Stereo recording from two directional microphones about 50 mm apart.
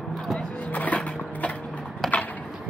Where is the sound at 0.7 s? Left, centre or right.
Left.